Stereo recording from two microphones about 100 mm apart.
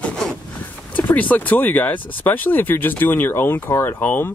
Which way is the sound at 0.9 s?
15° left (ahead or behind).